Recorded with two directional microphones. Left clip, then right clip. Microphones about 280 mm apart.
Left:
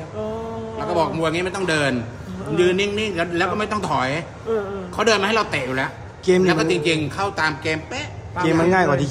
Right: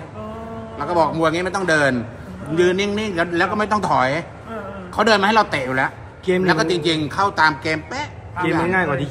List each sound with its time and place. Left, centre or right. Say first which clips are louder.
0.7 s a man's voice: right 3 dB; centre
4.5 s a man's voice: left 11 dB; left
4.9 s a man's voice: right 3 dB; centre
8.6 s a man's voice: left 2 dB; centre